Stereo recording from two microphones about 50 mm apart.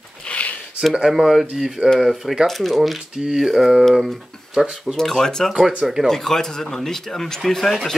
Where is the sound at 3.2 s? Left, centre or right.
Centre.